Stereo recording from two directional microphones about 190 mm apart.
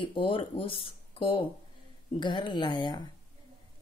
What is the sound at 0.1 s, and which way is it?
Speech, 25° left (ahead or behind).